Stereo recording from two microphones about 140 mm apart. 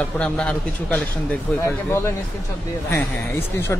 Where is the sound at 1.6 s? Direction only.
20° left (ahead or behind).